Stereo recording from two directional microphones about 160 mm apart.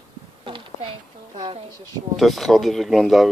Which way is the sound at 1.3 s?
25° right (ahead or behind).